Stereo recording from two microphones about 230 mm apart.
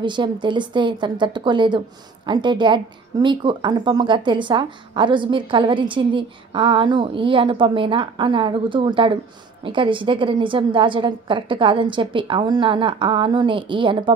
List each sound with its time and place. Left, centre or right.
0.0 s a woman's voice: centre